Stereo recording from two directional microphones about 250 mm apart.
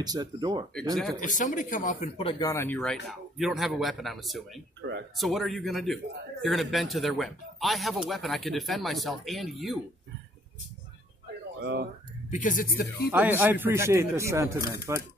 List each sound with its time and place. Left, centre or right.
0.0 s speech: centre
1.2 s speech: left; by 4.5 s centre
4.8 s speech: right
5.2 s speech: centre
11.6 s speech: right
12.3 s speech: left
13.1 s speech: centre